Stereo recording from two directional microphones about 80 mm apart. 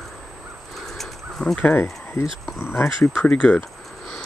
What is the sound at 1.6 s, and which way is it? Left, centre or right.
Speech, left.